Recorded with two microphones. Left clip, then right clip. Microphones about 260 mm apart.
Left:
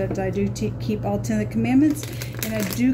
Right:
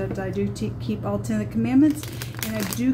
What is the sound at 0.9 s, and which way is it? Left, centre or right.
Speech, left.